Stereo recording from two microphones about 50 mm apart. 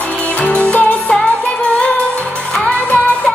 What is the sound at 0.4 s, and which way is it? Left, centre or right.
Music, left.